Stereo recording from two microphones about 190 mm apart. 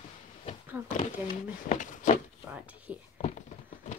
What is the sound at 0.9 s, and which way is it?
Speech, 35° left (ahead or behind).